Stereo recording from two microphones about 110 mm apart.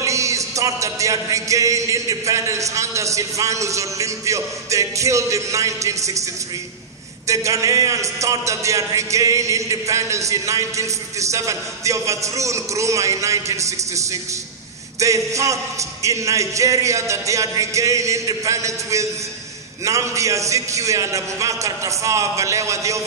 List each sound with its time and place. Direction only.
0.0 s a man's voice: 30° right (ahead or behind)
7.2 s a man's voice: 30° right (ahead or behind)